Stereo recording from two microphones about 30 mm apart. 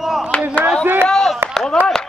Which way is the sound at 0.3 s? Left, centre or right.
Left.